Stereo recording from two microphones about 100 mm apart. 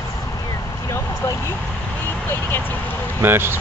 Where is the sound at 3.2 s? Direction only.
25° right (ahead or behind).